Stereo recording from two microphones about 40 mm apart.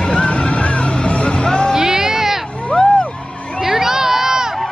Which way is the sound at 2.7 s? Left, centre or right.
Left.